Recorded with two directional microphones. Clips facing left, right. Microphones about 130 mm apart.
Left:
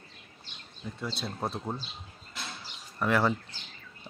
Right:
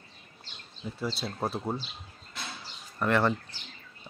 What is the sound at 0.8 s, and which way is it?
Speech, 10° right (ahead or behind).